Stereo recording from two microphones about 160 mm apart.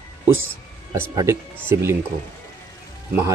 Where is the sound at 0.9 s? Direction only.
20° right (ahead or behind).